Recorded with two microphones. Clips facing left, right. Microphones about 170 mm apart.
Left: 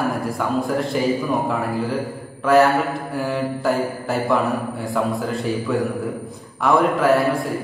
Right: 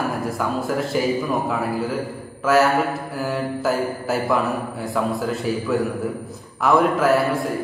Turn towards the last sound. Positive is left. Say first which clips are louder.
# left 1 dB
turn(degrees=0)  # may be behind; listen again after turning